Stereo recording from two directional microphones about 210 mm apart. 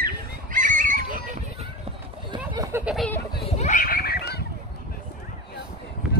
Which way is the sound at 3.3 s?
30° left (ahead or behind).